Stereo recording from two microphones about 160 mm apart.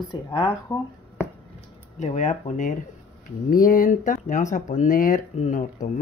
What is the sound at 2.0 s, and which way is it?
Speech, 50° left (ahead or behind).